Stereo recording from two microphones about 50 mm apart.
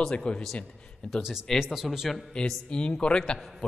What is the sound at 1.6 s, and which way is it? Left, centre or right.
Speech, centre.